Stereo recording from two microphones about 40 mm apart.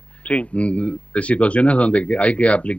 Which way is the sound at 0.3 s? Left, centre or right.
Left.